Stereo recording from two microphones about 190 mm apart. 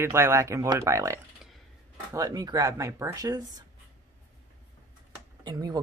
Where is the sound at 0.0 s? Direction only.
15° right (ahead or behind).